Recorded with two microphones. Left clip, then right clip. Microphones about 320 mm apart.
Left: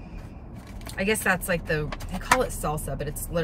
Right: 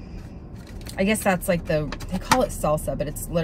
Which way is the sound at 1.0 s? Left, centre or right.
Centre.